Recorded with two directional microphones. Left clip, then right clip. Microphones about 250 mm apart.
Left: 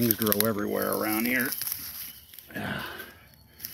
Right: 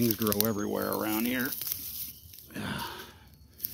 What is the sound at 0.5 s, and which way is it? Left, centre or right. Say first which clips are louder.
Speech: left 3 dB; centre.